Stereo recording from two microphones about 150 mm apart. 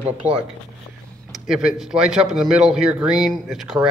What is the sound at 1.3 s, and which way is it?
Speech, 5° right (ahead or behind).